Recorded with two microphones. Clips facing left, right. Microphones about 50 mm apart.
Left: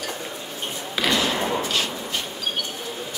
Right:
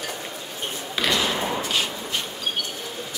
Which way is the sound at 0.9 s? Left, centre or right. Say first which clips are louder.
Left 1 dB; centre.